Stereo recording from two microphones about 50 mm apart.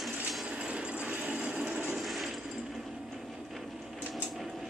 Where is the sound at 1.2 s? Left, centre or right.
Right.